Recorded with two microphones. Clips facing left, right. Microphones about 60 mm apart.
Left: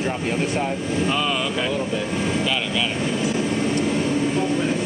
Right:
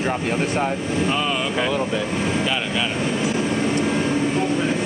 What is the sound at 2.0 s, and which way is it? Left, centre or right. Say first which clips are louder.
Vehicle: right 1 dB; centre.